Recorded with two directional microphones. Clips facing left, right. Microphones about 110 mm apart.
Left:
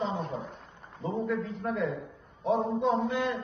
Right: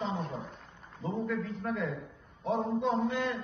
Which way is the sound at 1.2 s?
Centre (ahead or behind).